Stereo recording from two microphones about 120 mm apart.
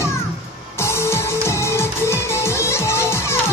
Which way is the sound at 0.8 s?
20° left (ahead or behind).